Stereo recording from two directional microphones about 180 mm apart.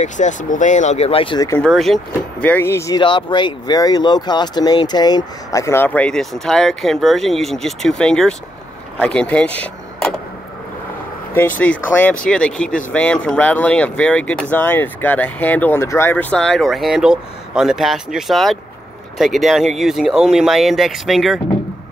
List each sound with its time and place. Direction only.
0.0 s speech: 40° left (ahead or behind)
1.6 s speech: centre (ahead or behind)
3.0 s speech: 25° left (ahead or behind); by 10.1 s 5° left (ahead or behind)
11.3 s speech: 10° left (ahead or behind)